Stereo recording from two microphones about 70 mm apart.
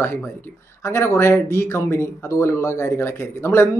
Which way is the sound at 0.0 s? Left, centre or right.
Left.